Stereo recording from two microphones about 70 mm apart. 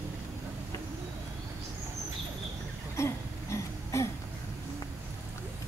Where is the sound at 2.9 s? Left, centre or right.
Left.